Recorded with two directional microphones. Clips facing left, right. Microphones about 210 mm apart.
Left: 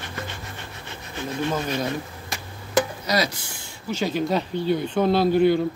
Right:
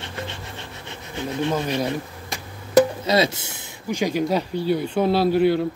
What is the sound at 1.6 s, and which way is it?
Speech, 15° right (ahead or behind).